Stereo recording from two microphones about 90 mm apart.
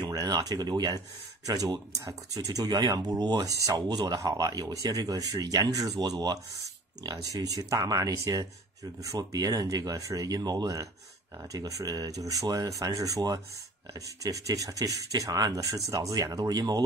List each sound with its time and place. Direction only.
0.0 s speech: 45° right (ahead or behind)